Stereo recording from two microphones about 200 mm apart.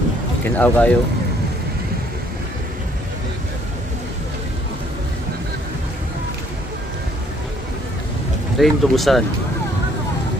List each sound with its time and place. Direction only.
0.6 s speech: 5° left (ahead or behind)
8.5 s speech: centre (ahead or behind)